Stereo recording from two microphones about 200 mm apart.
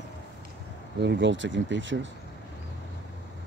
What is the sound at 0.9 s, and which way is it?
Speech, 65° right (ahead or behind).